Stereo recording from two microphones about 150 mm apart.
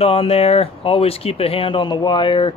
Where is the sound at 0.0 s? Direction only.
40° left (ahead or behind).